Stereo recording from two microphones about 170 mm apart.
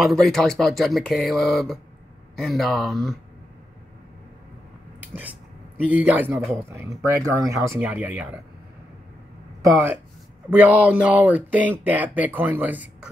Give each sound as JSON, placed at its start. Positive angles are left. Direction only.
{"t": 0.0, "sound": "speech", "side_deg": 0}
{"t": 5.0, "sound": "a sound", "side_deg": -10}
{"t": 5.8, "sound": "speech", "side_deg": -10}
{"t": 9.6, "sound": "speech", "side_deg": -20}